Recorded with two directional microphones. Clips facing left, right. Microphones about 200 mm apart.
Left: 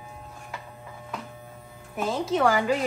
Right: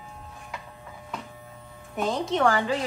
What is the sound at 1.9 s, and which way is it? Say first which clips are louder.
Speech: even; centre (ahead or behind).